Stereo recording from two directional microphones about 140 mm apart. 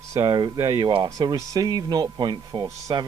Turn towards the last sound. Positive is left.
turn(degrees=-30)  # may be behind; listen again after turning